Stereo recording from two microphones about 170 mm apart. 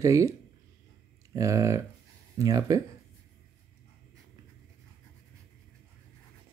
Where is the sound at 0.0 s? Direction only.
20° right (ahead or behind).